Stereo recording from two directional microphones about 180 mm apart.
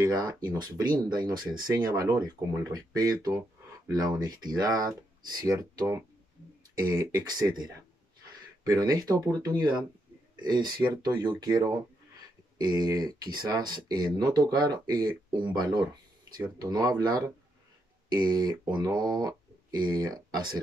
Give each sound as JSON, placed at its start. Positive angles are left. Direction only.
{"t": 0.0, "sound": "speech", "side_deg": -20}